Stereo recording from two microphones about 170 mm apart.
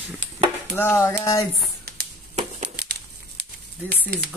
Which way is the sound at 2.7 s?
70° right (ahead or behind).